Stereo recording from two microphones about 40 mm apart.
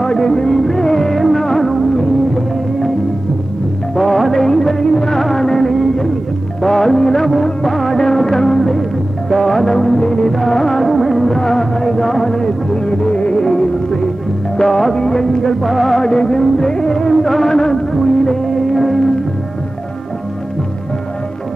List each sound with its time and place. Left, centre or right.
0.0 s music: centre
3.9 s music of bollywood: centre
6.6 s music: centre
7.4 s music of bollywood: centre
8.0 s music: centre
15.6 s music: centre
16.0 s music: centre
17.1 s music: centre